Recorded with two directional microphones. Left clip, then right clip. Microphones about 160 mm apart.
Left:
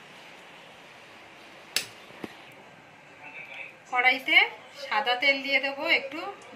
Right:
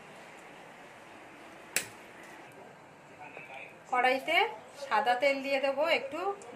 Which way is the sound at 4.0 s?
90° right.